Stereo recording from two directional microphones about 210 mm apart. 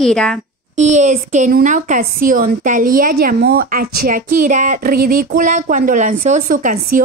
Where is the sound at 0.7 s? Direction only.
35° right (ahead or behind).